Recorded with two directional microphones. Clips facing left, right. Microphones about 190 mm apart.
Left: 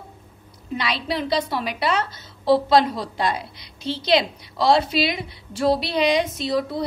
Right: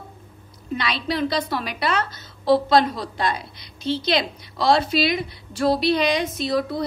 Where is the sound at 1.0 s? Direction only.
25° left (ahead or behind).